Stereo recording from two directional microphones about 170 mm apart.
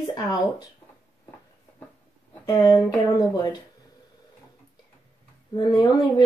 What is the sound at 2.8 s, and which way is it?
Speech, 20° left (ahead or behind).